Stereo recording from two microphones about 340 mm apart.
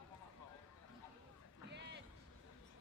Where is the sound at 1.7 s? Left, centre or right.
Right.